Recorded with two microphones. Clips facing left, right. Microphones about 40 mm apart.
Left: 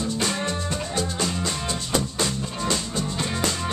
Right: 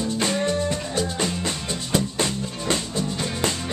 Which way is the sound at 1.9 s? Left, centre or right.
Right.